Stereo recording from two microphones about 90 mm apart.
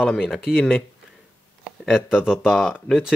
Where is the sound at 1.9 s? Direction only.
10° right (ahead or behind).